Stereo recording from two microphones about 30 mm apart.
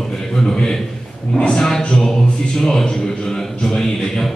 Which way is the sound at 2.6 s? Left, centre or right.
Centre.